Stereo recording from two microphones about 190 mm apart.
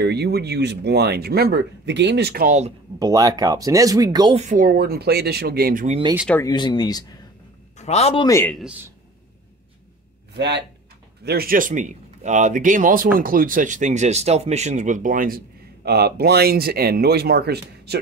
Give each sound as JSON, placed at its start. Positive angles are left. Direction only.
{"t": 0.0, "sound": "speech", "side_deg": -60}
{"t": 3.0, "sound": "speech", "side_deg": -20}
{"t": 4.4, "sound": "speech", "side_deg": -45}
{"t": 5.9, "sound": "speech", "side_deg": -25}
{"t": 6.4, "sound": "speech", "side_deg": 25}
{"t": 7.7, "sound": "a man's voice", "side_deg": 35}
{"t": 8.3, "sound": "a man's voice", "side_deg": 15}
{"t": 10.3, "sound": "speech", "side_deg": -65}
{"t": 11.2, "sound": "speech", "side_deg": -50}